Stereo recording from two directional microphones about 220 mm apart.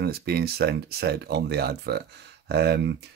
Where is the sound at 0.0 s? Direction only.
45° right (ahead or behind).